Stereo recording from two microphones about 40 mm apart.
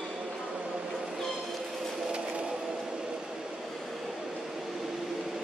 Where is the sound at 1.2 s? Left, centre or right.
Centre.